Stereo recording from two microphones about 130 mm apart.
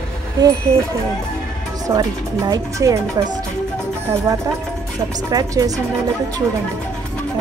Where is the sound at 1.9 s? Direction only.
30° right (ahead or behind).